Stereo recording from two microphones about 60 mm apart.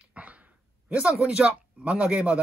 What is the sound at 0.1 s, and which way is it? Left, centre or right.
Dog, right.